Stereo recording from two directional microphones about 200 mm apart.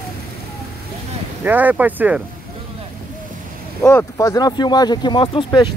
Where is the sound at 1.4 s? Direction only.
10° right (ahead or behind).